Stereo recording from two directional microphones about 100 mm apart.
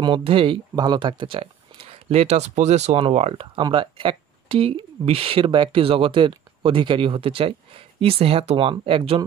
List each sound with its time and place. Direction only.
0.2 s speech: 65° right (ahead or behind)
0.7 s speech: 50° right (ahead or behind); by 3.4 s 90° right
3.5 s speech: 55° right (ahead or behind)